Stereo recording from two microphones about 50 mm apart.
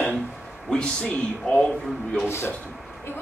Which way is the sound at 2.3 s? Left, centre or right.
Left.